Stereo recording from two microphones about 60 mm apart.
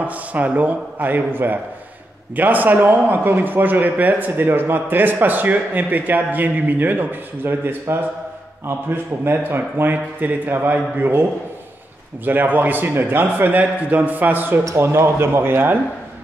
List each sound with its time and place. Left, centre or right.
0.0 s a man's voice: right
12.3 s speech: right
14.8 s speech: right